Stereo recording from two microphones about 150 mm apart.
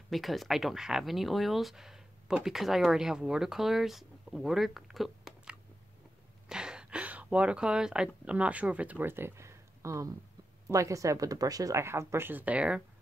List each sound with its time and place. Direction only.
0.1 s speech: centre (ahead or behind)